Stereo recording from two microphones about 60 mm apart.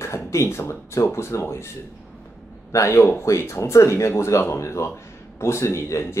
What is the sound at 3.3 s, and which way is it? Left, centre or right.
Speech, left.